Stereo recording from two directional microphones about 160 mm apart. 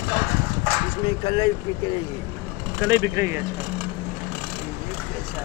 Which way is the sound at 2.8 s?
15° right (ahead or behind).